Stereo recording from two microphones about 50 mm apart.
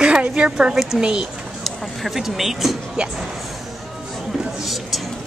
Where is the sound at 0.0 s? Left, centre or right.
Centre.